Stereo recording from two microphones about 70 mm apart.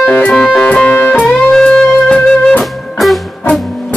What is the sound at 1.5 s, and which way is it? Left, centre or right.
Music, centre.